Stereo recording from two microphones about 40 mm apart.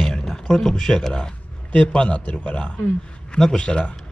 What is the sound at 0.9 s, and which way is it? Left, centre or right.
Speech, centre.